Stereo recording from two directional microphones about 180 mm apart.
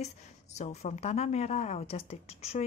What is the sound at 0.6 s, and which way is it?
A woman's voice, 40° left (ahead or behind).